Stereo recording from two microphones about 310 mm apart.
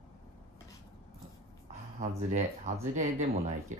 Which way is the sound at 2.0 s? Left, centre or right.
Right.